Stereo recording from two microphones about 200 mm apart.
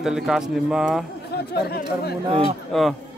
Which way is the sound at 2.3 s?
25° right (ahead or behind).